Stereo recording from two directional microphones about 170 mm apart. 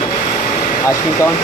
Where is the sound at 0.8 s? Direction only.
20° left (ahead or behind).